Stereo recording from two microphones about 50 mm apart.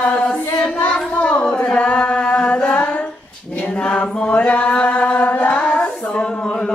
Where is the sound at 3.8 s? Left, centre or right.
Left.